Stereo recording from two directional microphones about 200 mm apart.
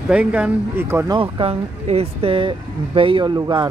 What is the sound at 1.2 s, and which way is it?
Speech, 30° right (ahead or behind).